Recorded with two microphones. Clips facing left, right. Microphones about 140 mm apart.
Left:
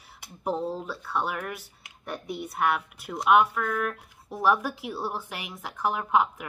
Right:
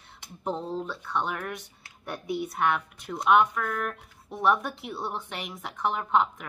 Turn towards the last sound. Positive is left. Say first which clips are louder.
# left 1 dB
turn(degrees=5)  # may be behind; listen again after turning